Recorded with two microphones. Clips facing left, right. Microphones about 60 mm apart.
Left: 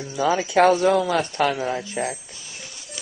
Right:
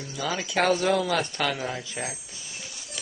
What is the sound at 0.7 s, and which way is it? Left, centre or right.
Speech, left.